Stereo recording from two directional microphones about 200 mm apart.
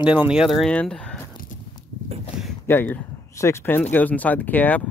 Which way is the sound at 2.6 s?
10° left (ahead or behind).